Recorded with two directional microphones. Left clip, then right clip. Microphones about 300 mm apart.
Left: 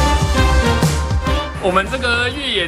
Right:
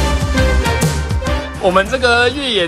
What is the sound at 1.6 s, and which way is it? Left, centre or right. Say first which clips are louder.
Speech: right 5 dB; centre.